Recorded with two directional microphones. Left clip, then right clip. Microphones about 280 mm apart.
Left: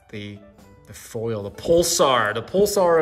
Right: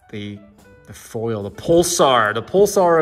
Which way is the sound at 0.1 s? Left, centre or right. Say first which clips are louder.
Right 3 dB; centre.